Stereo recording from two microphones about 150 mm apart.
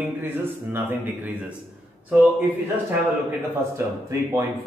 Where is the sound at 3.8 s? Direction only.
15° right (ahead or behind).